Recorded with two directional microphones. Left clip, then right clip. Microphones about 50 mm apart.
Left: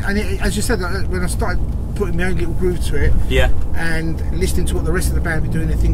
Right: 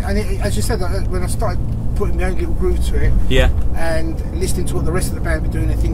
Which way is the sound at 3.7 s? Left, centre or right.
Left.